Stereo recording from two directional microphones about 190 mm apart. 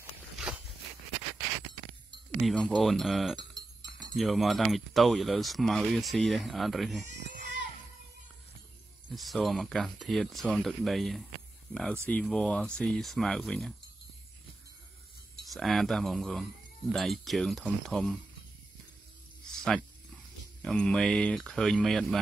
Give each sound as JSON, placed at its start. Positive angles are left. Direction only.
{"t": 2.4, "sound": "speech", "side_deg": 0}
{"t": 7.1, "sound": "baby cry", "side_deg": -65}
{"t": 9.1, "sound": "speech", "side_deg": 0}
{"t": 15.5, "sound": "speech", "side_deg": 0}
{"t": 20.6, "sound": "speech", "side_deg": 5}